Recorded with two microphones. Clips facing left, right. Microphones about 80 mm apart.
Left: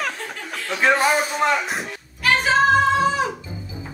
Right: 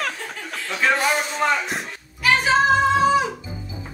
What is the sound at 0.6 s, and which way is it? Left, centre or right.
Speech, centre.